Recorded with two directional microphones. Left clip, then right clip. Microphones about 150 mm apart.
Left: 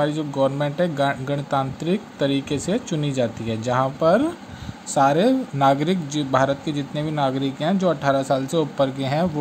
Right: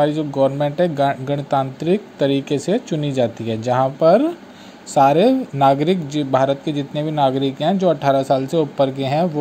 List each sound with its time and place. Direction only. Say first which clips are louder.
0.0 s a man's voice: right 4 dB; 15° right (ahead or behind)